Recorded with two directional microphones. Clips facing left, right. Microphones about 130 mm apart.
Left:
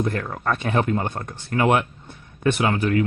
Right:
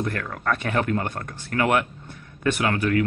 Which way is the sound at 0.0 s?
25° left (ahead or behind).